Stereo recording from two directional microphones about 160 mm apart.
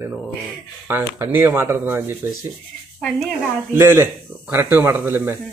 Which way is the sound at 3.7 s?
15° right (ahead or behind).